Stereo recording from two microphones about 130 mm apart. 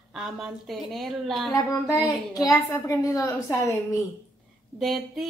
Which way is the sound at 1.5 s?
30° left (ahead or behind).